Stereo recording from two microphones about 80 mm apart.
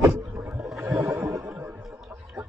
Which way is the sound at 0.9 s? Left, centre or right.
Right.